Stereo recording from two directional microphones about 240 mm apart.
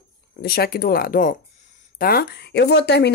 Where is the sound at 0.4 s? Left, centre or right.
Left.